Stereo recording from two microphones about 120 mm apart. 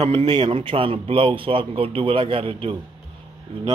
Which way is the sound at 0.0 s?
60° right (ahead or behind).